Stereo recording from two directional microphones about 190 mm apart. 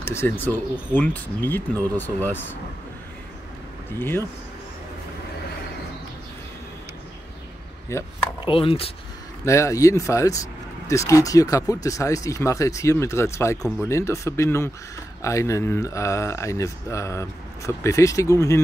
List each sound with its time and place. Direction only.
0.0 s speech: 15° left (ahead or behind)
7.9 s speech: 15° left (ahead or behind)
8.4 s speech: 30° left (ahead or behind)
9.4 s speech: 15° left (ahead or behind)
13.6 s speech: centre (ahead or behind)
13.8 s speech: 15° left (ahead or behind)